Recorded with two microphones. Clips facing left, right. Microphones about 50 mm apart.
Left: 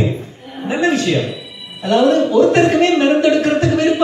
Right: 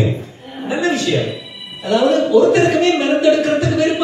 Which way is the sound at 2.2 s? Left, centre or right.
Left.